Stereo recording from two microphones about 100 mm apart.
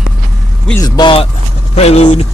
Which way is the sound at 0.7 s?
40° left (ahead or behind).